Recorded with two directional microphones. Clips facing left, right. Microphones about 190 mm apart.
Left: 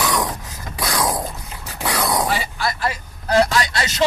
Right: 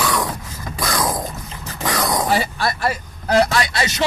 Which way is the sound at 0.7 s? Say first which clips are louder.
Even; 10° left (ahead or behind).